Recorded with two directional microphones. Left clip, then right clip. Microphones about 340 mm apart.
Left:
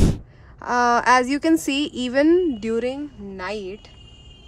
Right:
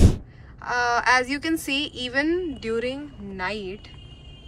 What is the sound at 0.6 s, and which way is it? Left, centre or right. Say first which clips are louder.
Speech: left 4 dB; left.